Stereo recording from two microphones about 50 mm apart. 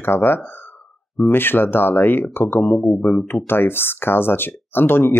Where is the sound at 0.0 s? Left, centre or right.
Left.